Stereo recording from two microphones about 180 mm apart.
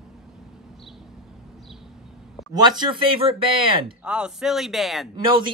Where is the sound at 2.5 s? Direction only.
25° right (ahead or behind).